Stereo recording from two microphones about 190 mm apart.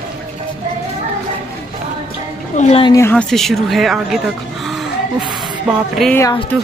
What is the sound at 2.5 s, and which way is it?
Speech, 35° left (ahead or behind).